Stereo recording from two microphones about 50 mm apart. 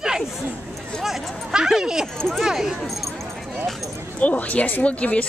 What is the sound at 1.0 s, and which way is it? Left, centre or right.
Chatter, centre.